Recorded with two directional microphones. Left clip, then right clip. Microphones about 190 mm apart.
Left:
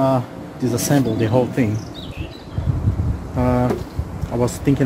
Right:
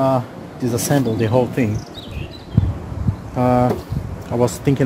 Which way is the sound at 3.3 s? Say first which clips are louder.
Right 3 dB; 40° right (ahead or behind).